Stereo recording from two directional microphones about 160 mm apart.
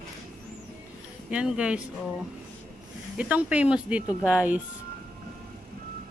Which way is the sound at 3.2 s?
10° right (ahead or behind).